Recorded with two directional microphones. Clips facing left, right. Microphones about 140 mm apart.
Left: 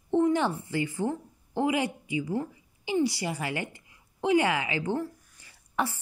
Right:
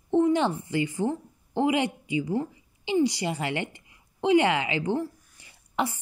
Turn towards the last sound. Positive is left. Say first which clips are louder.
# right 2 dB
turn(degrees=-15)  # may be behind; listen again after turning